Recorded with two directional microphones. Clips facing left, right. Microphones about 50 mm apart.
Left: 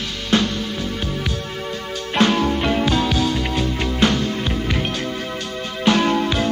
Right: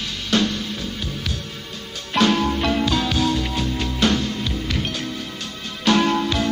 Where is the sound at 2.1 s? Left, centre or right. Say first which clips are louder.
Left 1 dB; left.